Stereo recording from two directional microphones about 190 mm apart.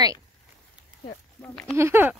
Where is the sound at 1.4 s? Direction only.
5° left (ahead or behind).